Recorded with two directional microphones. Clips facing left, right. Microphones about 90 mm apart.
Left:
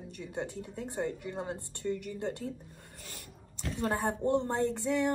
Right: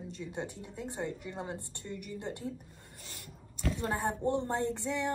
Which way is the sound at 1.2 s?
20° left (ahead or behind).